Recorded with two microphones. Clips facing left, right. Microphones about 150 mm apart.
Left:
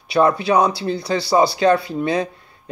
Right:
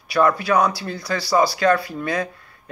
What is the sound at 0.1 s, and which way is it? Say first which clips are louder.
Speech: left 2 dB; 25° left (ahead or behind).